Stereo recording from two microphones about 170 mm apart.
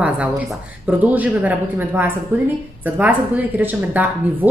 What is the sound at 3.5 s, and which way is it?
Speech, 10° right (ahead or behind).